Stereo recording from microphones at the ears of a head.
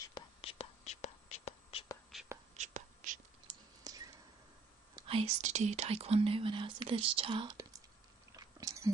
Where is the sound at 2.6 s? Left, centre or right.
Right.